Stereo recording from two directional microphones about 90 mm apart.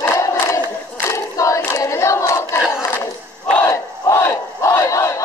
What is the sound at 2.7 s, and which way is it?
Battle cry, 30° left (ahead or behind).